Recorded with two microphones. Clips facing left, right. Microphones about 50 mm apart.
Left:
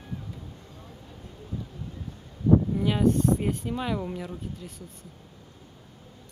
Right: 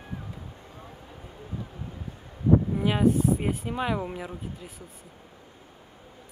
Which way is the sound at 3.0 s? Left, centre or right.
Centre.